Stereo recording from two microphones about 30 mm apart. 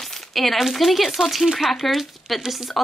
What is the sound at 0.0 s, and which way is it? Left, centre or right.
A woman's voice, centre.